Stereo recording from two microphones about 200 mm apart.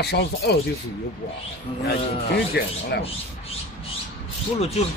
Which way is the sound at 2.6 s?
55° left (ahead or behind).